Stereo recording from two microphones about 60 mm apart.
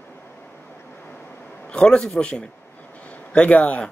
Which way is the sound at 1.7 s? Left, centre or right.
Centre.